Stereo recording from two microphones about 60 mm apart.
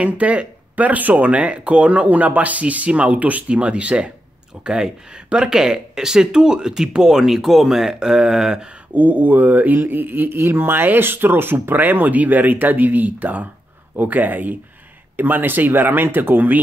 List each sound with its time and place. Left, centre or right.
0.0 s speech: right
8.9 s speech: right